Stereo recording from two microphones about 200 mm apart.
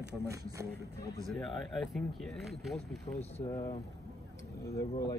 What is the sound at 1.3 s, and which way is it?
A man's voice, centre (ahead or behind).